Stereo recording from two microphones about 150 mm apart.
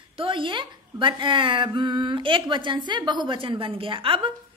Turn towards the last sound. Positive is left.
turn(degrees=-35)  # may be behind; listen again after turning